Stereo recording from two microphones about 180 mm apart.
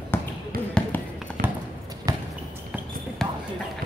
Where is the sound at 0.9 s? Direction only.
10° left (ahead or behind).